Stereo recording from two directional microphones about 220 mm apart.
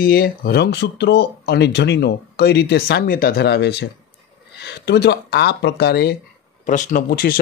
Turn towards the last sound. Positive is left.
turn(degrees=40)  # may be behind; listen again after turning